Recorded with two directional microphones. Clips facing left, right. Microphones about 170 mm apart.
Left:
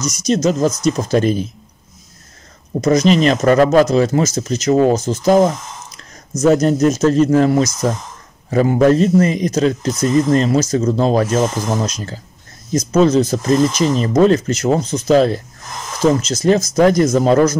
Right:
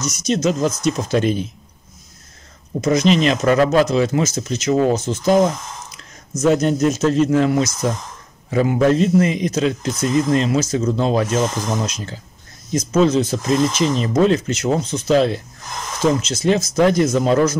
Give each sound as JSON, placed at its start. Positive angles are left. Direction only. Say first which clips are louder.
{"t": 0.0, "sound": "speech", "louder": "left 3 dB", "side_deg": 40}
{"t": 2.8, "sound": "speech", "louder": "left 3 dB", "side_deg": 40}
{"t": 6.4, "sound": "speech", "louder": "left 3 dB", "side_deg": 40}